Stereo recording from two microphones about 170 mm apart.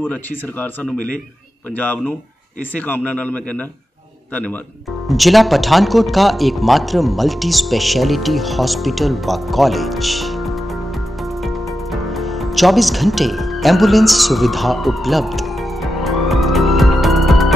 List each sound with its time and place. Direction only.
0.1 s speech: 10° left (ahead or behind)
0.9 s a man's voice: 50° left (ahead or behind)
1.8 s speech: 10° left (ahead or behind)
5.0 s speech: centre (ahead or behind)
11.4 s music: centre (ahead or behind)